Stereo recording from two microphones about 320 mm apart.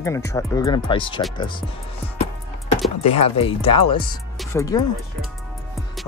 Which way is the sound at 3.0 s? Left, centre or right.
Centre.